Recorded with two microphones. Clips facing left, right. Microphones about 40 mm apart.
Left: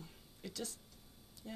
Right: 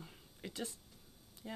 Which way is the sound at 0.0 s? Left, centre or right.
Right.